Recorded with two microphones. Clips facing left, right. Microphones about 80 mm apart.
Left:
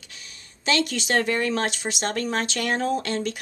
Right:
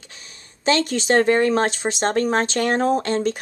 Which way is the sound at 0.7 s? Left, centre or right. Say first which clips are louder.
Right 5 dB; right.